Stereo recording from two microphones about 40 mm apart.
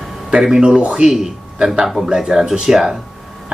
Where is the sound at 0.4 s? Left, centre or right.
Centre.